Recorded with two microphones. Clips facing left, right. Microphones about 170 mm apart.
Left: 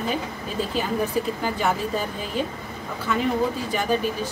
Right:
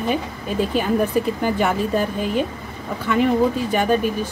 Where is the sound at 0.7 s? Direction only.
55° right (ahead or behind).